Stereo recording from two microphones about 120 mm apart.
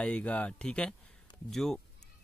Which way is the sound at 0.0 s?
10° left (ahead or behind).